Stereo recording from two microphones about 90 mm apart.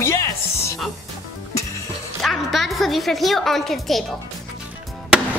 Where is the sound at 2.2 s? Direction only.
Centre (ahead or behind).